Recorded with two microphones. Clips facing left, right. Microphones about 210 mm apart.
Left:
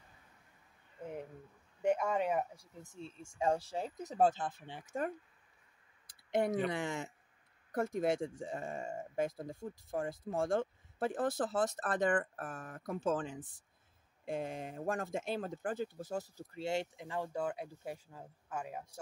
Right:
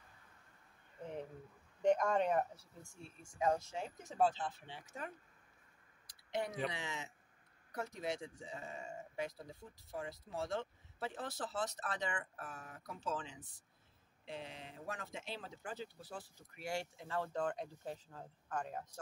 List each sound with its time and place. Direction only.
1.8 s speech: 5° left (ahead or behind); by 5.1 s 50° left (ahead or behind)
6.0 s a sound: 50° left (ahead or behind)
6.7 s speech: 50° left (ahead or behind)
16.5 s speech: 20° left (ahead or behind)